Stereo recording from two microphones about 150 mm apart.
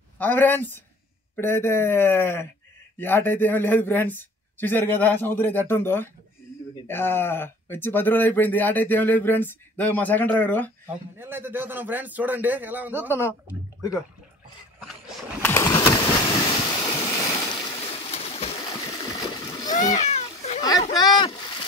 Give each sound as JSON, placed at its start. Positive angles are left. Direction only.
{"t": 0.2, "sound": "speech", "side_deg": 10}
{"t": 11.1, "sound": "a man's voice", "side_deg": -15}
{"t": 15.6, "sound": "a sound", "side_deg": 25}
{"t": 16.4, "sound": "waves", "side_deg": 30}
{"t": 17.7, "sound": "a sound", "side_deg": 40}
{"t": 19.7, "sound": "cat", "side_deg": 50}
{"t": 20.9, "sound": "boat", "side_deg": 25}